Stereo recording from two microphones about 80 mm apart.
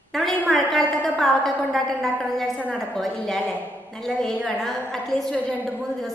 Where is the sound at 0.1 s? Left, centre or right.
Centre.